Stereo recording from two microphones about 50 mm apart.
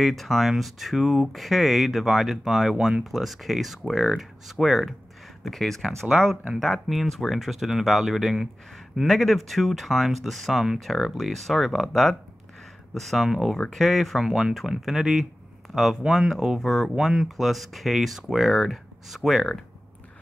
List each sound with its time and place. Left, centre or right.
0.0 s speech: centre
6.9 s speech: centre
13.6 s speech: centre